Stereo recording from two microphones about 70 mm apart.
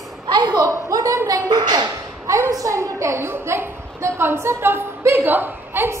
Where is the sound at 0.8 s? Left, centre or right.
Right.